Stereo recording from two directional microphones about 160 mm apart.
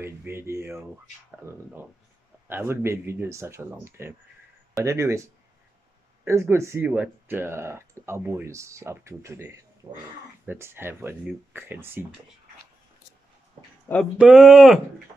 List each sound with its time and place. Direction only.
0.0 s speech: 15° right (ahead or behind)
2.4 s speech: 15° right (ahead or behind)
6.2 s speech: 15° right (ahead or behind)
14.1 s speech: 5° right (ahead or behind)